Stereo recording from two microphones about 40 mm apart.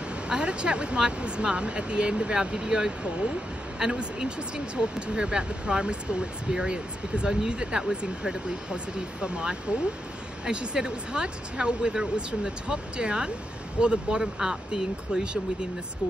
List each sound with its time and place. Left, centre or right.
0.3 s speech: right